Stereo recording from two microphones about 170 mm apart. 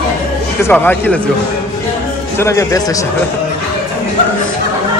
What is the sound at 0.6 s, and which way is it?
Speech, 10° left (ahead or behind).